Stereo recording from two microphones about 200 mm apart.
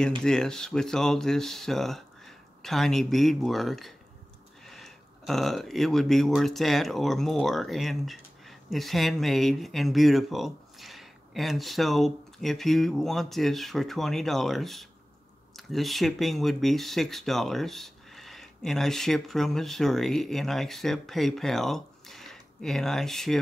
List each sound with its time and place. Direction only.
0.2 s speech: 5° left (ahead or behind)